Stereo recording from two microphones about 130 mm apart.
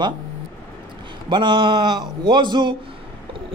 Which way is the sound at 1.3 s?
40° right (ahead or behind).